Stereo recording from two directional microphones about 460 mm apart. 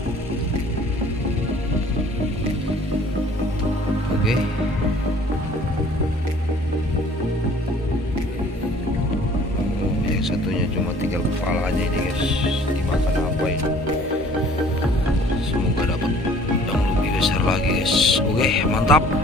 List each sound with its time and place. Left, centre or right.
12.2 s music: centre
17.2 s music: centre